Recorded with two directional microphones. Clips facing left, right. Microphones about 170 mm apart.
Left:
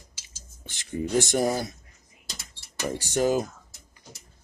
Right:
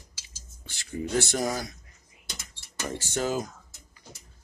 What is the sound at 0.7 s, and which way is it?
Speech, 20° left (ahead or behind).